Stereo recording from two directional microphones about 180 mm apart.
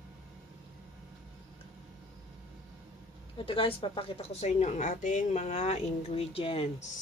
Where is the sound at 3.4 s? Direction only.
30° left (ahead or behind).